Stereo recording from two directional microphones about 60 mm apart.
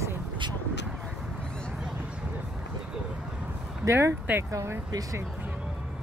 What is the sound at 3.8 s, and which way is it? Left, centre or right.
Speech, right.